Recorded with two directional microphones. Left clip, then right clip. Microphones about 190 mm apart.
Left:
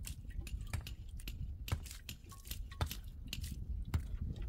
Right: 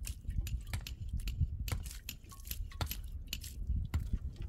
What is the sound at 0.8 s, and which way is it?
Keys jangling, 25° right (ahead or behind).